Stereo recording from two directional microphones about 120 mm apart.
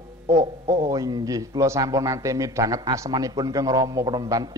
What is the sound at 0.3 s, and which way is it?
A man's voice, 25° right (ahead or behind).